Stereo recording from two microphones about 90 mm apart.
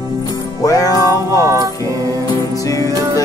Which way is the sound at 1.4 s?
40° right (ahead or behind).